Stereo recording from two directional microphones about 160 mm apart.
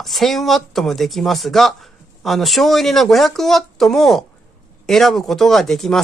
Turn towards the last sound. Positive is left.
turn(degrees=0)  # may be behind; listen again after turning